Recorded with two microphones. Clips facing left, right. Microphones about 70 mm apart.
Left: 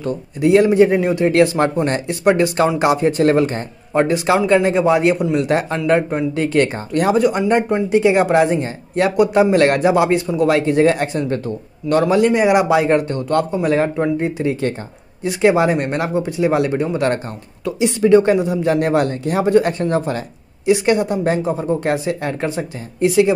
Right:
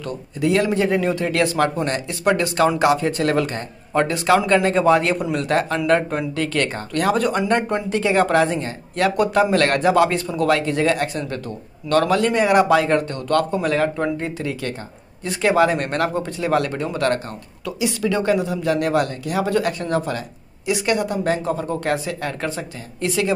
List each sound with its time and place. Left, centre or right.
0.0 s speech: left
11.9 s speech: centre
17.6 s speech: left